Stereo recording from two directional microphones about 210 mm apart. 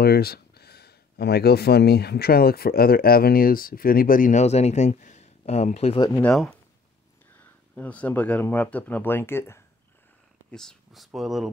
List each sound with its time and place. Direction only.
0.0 s speech: 50° left (ahead or behind); by 6.0 s 30° left (ahead or behind)
6.0 s speech: 10° left (ahead or behind)
7.3 s speech: 5° left (ahead or behind)